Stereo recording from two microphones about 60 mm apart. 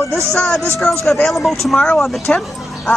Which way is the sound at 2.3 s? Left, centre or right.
Centre.